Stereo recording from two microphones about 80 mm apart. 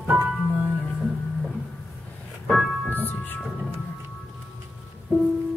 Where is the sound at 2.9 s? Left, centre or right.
Left.